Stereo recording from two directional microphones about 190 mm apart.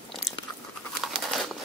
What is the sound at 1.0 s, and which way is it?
Crumpling, centre (ahead or behind).